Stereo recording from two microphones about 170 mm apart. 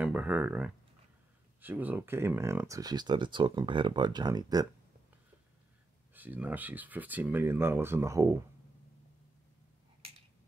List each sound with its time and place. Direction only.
0.0 s speech: 10° right (ahead or behind)
6.1 s speech: 10° right (ahead or behind)